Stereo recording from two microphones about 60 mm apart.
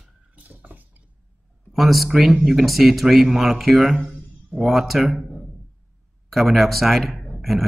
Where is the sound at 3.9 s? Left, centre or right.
Right.